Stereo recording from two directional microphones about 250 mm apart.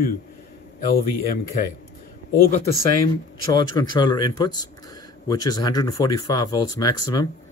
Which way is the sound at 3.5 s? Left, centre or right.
Centre.